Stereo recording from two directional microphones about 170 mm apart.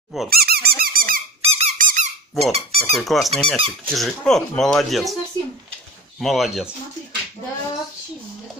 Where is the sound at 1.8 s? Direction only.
50° right (ahead or behind).